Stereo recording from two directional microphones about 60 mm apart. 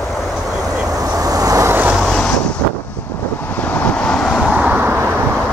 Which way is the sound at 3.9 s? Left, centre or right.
Centre.